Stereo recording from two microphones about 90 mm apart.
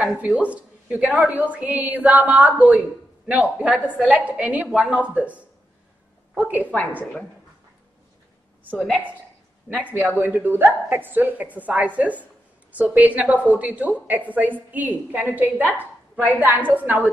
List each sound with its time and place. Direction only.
0.0 s a woman's voice: 5° right (ahead or behind)
9.9 s a woman's voice: 20° right (ahead or behind)
15.6 s a woman's voice: 20° left (ahead or behind)
16.3 s a woman's voice: 20° right (ahead or behind)